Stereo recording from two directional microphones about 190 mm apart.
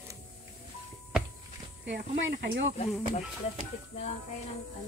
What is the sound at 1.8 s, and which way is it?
Speech, 65° right (ahead or behind).